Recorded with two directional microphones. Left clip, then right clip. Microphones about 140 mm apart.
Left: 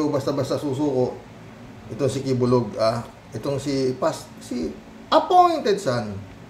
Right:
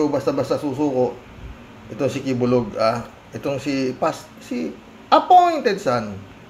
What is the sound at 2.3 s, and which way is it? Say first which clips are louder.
A man's voice: right 1 dB; 5° right (ahead or behind).